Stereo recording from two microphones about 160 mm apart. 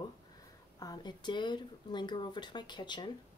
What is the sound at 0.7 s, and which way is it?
A woman's voice, 25° left (ahead or behind).